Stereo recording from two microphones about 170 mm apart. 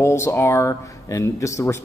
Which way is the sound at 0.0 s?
15° left (ahead or behind).